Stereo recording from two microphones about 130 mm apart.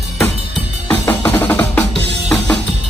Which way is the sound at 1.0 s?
15° left (ahead or behind).